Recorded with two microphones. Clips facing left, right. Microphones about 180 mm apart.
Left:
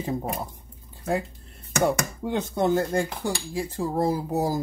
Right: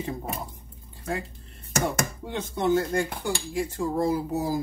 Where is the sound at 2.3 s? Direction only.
40° left (ahead or behind).